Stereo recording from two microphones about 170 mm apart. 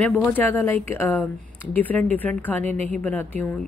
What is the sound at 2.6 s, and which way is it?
Speech, 40° right (ahead or behind).